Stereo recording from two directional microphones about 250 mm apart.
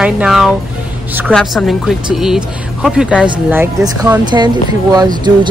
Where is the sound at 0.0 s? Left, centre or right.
Centre.